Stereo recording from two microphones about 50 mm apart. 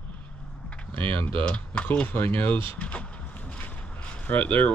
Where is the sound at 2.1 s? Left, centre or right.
Left.